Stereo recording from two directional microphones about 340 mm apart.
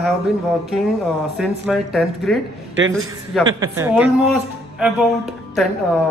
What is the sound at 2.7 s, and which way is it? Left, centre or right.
Speech, right.